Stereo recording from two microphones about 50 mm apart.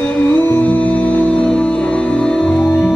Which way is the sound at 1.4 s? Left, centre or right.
Left.